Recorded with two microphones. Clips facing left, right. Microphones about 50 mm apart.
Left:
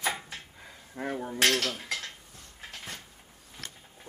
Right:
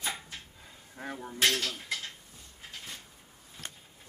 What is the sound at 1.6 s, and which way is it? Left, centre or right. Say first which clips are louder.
Dishes: left 3 dB; left.